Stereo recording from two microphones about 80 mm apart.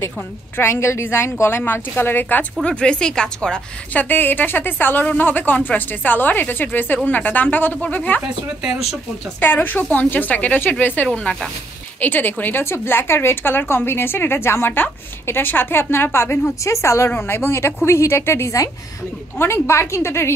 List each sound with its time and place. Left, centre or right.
0.6 s a woman's voice: left
2.6 s a woman's voice: centre
3.9 s a woman's voice: left
9.4 s a woman's voice: left